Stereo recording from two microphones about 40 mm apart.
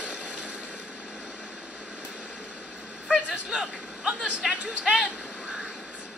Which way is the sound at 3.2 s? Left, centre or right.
Right.